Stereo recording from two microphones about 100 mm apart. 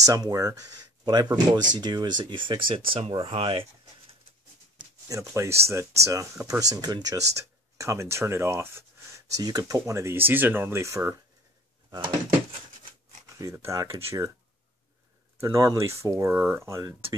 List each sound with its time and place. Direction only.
0.0 s speech: 35° right (ahead or behind); by 3.6 s 70° right (ahead or behind)
5.0 s speech: 30° right (ahead or behind)
9.3 s speech: 40° right (ahead or behind)
13.4 s speech: 30° right (ahead or behind)
15.4 s speech: 30° right (ahead or behind)
16.3 s speech: 20° right (ahead or behind)